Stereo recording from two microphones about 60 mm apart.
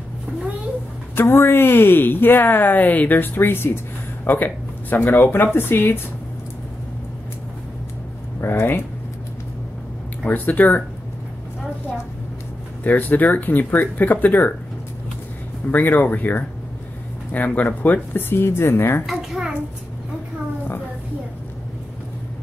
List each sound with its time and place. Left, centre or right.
1.1 s a woman's voice: left
8.4 s speech: left
10.2 s speech: left
12.8 s a woman's voice: left
15.7 s a woman's voice: left
19.0 s a sound: centre